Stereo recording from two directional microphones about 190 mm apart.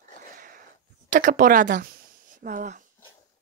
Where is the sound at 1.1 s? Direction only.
45° right (ahead or behind).